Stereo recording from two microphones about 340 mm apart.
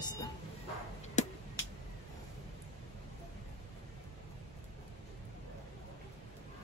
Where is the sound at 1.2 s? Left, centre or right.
Left.